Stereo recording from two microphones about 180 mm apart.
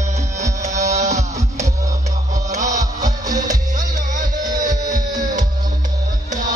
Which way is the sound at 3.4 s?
45° right (ahead or behind).